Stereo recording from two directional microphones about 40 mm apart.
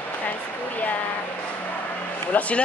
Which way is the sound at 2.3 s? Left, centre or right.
Left.